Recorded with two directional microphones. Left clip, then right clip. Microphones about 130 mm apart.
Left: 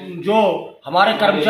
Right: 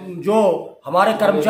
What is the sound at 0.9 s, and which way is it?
Speech, 45° right (ahead or behind).